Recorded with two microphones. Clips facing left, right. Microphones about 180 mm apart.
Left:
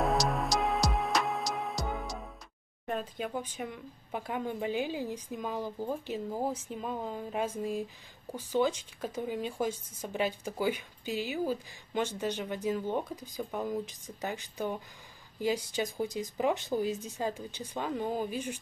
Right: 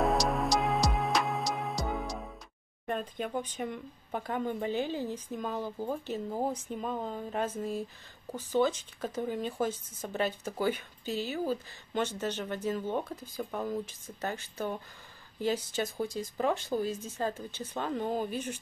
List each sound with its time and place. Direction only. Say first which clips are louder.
0.0 s music: right 1 dB; centre (ahead or behind)
2.9 s speech: right 1 dB; 5° left (ahead or behind)